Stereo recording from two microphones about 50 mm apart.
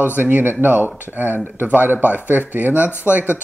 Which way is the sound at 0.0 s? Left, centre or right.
Right.